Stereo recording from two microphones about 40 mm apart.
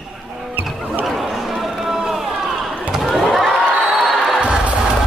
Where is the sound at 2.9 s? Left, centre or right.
Centre.